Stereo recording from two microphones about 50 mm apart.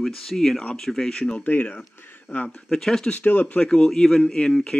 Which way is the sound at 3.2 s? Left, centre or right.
Left.